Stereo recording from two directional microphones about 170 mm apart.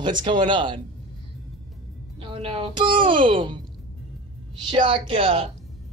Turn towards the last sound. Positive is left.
turn(degrees=-35)  # may be behind; listen again after turning